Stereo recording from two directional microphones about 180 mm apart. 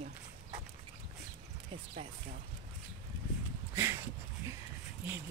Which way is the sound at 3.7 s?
15° right (ahead or behind).